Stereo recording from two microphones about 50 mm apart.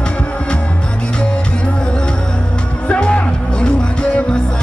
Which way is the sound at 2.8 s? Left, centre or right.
Left.